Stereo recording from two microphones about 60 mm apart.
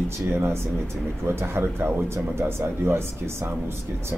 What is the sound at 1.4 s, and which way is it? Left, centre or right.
Speech, right.